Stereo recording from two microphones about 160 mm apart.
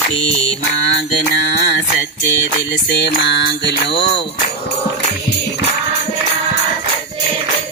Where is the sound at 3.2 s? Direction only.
90° left.